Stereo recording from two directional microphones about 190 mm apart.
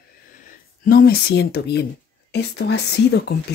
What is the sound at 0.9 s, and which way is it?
Speech, 55° left (ahead or behind).